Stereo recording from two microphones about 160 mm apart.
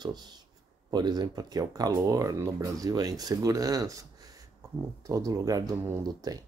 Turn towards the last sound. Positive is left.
turn(degrees=-20)  # may be behind; listen again after turning